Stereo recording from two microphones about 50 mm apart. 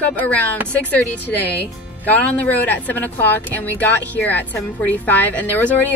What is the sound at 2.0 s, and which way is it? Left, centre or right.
Speech, left.